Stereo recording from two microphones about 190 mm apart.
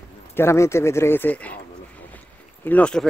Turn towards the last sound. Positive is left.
turn(degrees=5)  # may be behind; listen again after turning